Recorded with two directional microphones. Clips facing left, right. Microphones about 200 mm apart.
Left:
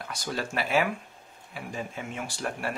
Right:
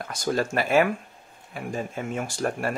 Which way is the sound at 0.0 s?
45° right (ahead or behind).